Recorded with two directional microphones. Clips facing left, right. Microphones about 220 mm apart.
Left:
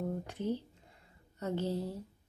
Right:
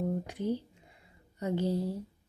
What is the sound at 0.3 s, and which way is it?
Speech, 15° right (ahead or behind).